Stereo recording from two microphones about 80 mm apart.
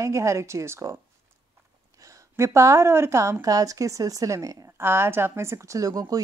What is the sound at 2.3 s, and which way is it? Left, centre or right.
A woman's voice, right.